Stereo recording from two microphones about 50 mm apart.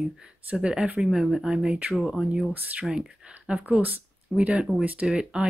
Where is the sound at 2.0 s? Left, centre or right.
Centre.